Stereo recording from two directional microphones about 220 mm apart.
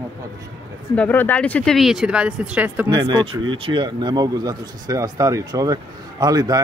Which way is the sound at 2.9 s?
20° right (ahead or behind).